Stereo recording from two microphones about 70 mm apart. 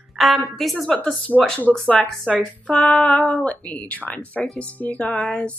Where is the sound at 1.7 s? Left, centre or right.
Centre.